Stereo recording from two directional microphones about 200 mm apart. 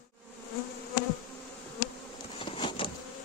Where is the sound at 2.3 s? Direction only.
25° left (ahead or behind).